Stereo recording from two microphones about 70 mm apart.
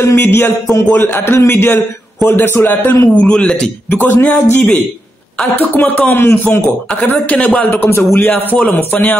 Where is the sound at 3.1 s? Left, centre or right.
Centre.